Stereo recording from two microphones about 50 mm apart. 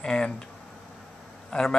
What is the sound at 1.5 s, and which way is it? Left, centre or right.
Speech, left.